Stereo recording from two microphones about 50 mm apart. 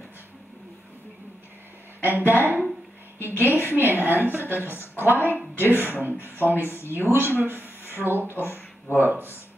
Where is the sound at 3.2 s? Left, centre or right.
Right.